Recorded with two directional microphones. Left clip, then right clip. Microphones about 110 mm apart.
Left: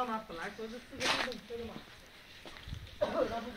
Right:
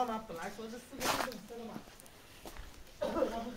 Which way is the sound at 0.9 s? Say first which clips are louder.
Left 2 dB; 20° right (ahead or behind).